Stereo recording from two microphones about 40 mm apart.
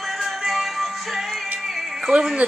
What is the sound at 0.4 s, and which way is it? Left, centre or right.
Music, centre.